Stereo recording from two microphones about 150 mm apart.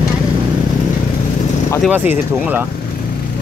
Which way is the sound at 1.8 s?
10° right (ahead or behind).